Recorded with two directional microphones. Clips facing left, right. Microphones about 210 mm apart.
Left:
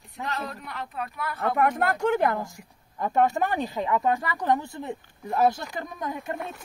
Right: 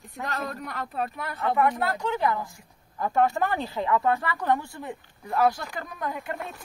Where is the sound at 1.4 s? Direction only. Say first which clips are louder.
Even; 45° left (ahead or behind).